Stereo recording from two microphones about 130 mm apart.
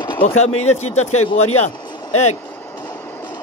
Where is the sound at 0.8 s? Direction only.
60° left (ahead or behind).